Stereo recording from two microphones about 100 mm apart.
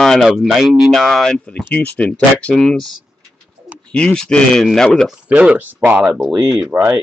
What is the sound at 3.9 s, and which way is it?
Speech, 10° left (ahead or behind).